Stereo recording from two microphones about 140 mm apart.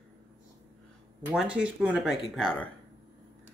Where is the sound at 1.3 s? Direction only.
10° right (ahead or behind).